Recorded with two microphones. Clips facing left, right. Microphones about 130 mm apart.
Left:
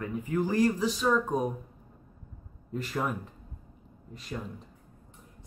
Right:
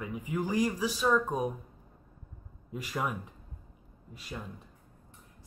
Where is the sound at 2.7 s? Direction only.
10° right (ahead or behind).